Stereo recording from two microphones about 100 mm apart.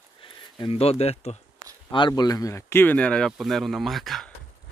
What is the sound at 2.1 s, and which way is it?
Speech, 35° left (ahead or behind).